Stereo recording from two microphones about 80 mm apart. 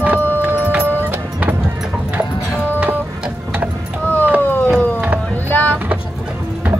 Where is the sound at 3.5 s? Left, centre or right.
Centre.